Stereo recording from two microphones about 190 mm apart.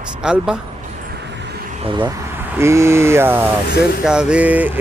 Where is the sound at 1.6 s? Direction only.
30° right (ahead or behind).